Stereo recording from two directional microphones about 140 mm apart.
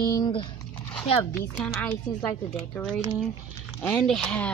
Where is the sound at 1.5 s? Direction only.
5° left (ahead or behind).